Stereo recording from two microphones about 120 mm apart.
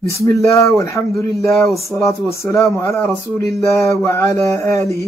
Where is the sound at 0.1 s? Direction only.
25° left (ahead or behind).